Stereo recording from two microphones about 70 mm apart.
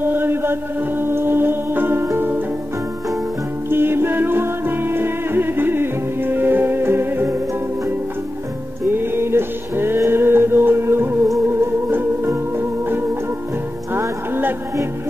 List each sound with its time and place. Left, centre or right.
0.0 s music: right
3.7 s music: right
8.8 s music: right